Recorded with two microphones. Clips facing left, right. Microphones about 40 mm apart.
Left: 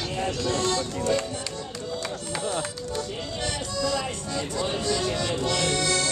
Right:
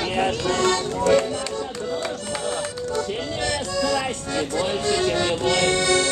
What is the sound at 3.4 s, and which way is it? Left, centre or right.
Music, right.